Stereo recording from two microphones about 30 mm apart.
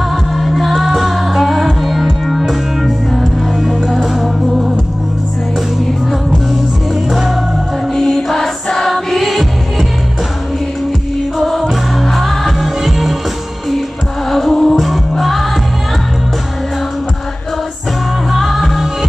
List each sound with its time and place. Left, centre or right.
0.4 s music: centre
7.1 s music: centre
7.9 s music: centre
11.3 s music: centre
14.5 s music: centre
14.8 s music: centre
18.3 s music: centre